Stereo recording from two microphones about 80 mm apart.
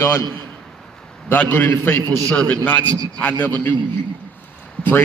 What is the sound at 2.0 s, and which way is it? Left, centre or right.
Speech, right.